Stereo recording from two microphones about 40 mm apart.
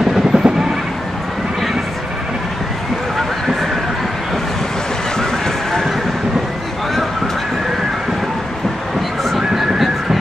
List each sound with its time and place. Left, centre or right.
0.1 s train: centre
5.1 s a sound: centre
9.2 s whistling: centre